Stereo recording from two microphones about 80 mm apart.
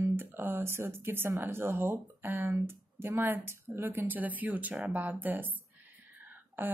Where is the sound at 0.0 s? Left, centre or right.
Right.